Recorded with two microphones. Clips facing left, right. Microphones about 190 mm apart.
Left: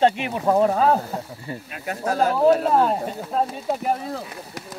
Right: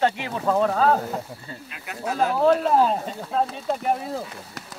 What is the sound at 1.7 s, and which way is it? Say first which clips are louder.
Speech: left 4 dB; 45° left (ahead or behind).